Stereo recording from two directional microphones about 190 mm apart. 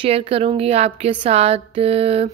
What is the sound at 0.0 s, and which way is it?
Speech, 30° right (ahead or behind).